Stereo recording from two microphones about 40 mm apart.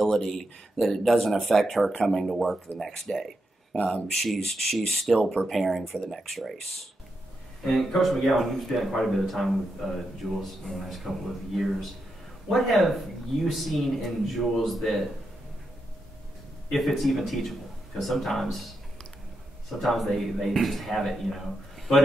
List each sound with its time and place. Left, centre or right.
0.0 s a man's voice: centre
3.7 s speech: centre
4.2 s a man's voice: centre
7.6 s a man's voice: centre
16.7 s a man's voice: centre
19.8 s a man's voice: centre